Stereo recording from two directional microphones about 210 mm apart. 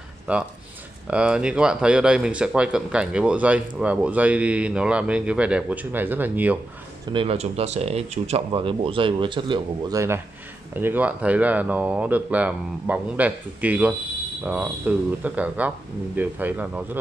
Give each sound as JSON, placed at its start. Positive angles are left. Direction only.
{"t": 0.3, "sound": "speech", "side_deg": -5}
{"t": 7.1, "sound": "speech", "side_deg": -25}